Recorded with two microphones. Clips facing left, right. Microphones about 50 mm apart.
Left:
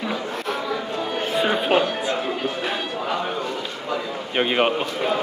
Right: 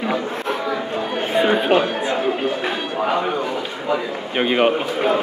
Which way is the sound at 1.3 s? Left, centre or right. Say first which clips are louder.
Right 5 dB; centre.